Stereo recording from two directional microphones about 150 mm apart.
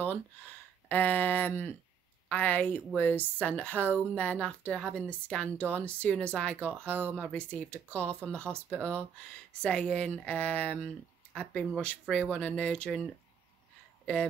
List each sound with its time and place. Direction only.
0.8 s a woman's voice: 10° left (ahead or behind)
5.6 s speech: 15° right (ahead or behind)
5.9 s a woman's voice: 10° left (ahead or behind)
7.0 s speech: 15° right (ahead or behind)
7.3 s a woman's voice: 10° left (ahead or behind)
8.5 s speech: 15° right (ahead or behind)
9.5 s a woman's voice: 5° left (ahead or behind)
14.0 s speech: 5° left (ahead or behind)